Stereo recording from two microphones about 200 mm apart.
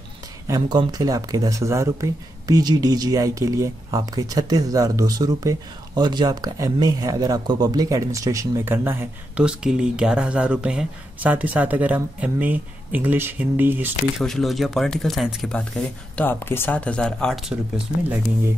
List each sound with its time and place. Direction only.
0.5 s speech: 20° right (ahead or behind)
14.2 s speech: centre (ahead or behind)
16.2 s speech: 10° left (ahead or behind)